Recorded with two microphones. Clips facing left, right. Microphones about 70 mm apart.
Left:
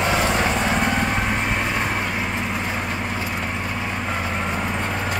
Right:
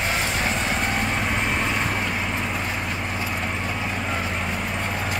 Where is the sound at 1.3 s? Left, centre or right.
Centre.